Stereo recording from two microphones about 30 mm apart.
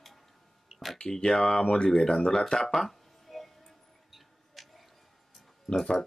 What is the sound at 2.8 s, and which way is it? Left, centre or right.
Music, centre.